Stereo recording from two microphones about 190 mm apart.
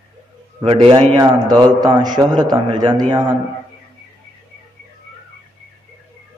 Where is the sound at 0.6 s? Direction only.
30° right (ahead or behind).